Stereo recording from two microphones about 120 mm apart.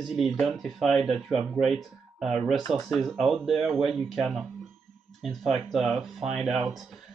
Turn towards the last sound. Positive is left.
turn(degrees=0)  # may be behind; listen again after turning